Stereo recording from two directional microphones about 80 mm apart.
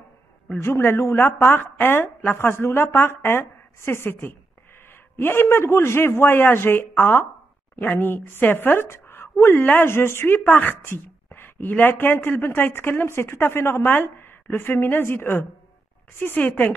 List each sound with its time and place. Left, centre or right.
0.5 s a woman's voice: left